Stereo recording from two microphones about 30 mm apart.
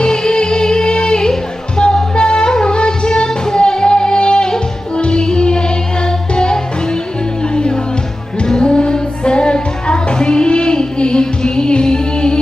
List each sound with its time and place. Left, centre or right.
0.0 s music: left